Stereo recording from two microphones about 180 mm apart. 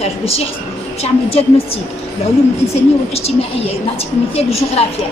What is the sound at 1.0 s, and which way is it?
Speech, 35° left (ahead or behind).